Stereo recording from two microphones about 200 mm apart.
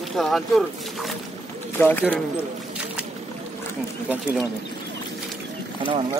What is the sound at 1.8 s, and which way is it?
Speech, 10° left (ahead or behind).